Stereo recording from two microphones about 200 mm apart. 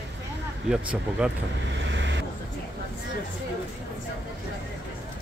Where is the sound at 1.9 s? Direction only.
60° right (ahead or behind).